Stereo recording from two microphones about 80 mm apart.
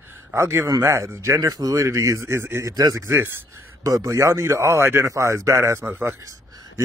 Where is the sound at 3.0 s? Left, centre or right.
Right.